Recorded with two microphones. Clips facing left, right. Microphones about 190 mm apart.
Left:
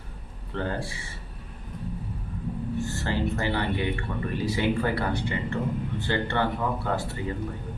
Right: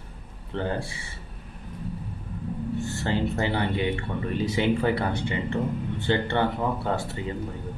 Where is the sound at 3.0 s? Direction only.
25° right (ahead or behind).